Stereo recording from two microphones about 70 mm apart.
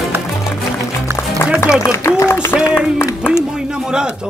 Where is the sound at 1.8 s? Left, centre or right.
Left.